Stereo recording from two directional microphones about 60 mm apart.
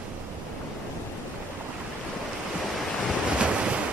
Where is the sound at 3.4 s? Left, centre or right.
Centre.